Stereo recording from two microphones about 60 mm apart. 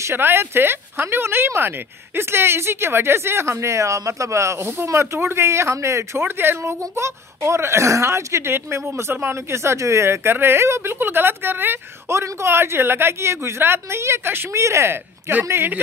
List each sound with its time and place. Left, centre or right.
0.0 s a woman's voice: right
6.2 s speech: right
6.8 s a woman's voice: right
12.1 s a woman's voice: right
14.6 s speech: right